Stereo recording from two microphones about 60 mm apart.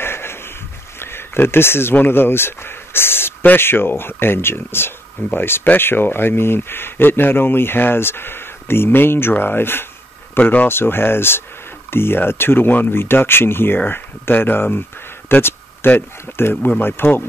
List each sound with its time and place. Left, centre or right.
0.0 s a sound: left
0.9 s speech: left
10.3 s speech: left
10.7 s speech: left